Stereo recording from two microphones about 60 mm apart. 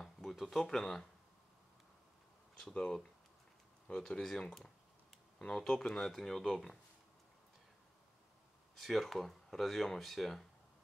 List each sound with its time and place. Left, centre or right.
0.0 s a sound: centre
2.7 s speech: centre
4.2 s speech: centre
8.7 s speech: centre